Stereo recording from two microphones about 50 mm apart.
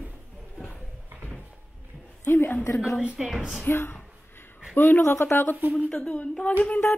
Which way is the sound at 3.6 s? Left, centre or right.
Left.